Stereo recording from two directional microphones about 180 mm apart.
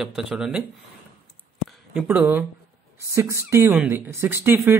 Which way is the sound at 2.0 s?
10° right (ahead or behind).